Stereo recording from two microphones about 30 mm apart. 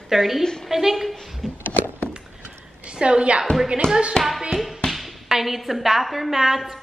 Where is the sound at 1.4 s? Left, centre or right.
Centre.